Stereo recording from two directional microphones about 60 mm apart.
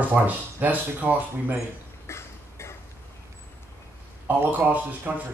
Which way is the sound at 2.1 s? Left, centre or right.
Left.